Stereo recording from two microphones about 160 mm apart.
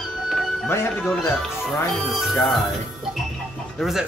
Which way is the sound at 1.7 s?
Centre (ahead or behind).